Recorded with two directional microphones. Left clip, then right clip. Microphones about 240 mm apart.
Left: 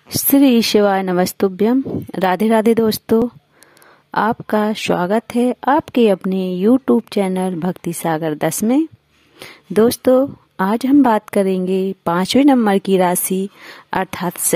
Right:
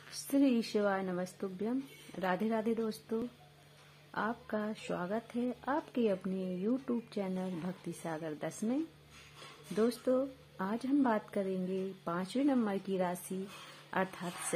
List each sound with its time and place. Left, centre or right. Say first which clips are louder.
0.3 s a woman's voice: left 19 dB; left